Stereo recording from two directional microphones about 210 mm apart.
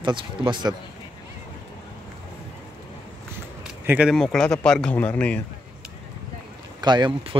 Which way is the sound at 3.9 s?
5° right (ahead or behind).